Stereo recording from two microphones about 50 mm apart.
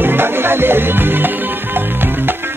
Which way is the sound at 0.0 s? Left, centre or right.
Right.